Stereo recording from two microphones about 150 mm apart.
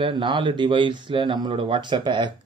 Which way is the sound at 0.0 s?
35° right (ahead or behind).